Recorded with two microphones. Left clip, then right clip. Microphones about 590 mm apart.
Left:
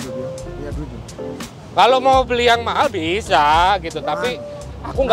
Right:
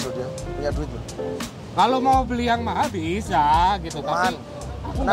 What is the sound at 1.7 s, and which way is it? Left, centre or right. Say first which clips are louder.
A man's voice: left 6 dB; left.